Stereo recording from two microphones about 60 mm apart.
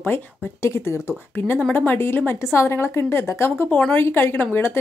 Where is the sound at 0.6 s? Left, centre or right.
Left.